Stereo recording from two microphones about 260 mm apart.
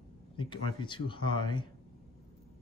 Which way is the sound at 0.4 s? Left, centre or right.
Centre.